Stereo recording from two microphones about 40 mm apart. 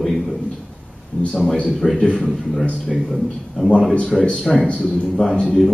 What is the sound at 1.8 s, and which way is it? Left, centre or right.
Speech, left.